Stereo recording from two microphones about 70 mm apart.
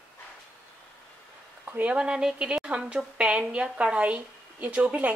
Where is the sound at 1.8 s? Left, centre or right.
Centre.